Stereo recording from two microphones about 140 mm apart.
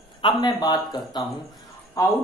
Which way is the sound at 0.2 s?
30° left (ahead or behind).